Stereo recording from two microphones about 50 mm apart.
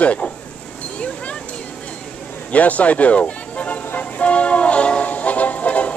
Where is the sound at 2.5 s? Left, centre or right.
Left.